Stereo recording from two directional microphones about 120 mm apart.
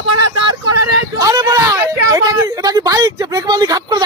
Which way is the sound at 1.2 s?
30° right (ahead or behind).